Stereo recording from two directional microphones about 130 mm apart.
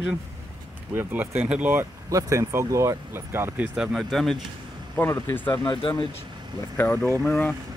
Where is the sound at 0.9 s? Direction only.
15° right (ahead or behind).